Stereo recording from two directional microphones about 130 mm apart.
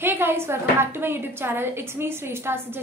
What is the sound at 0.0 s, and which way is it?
A woman's voice, 15° right (ahead or behind).